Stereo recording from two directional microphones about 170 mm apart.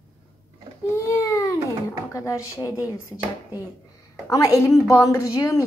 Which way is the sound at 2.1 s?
20° left (ahead or behind).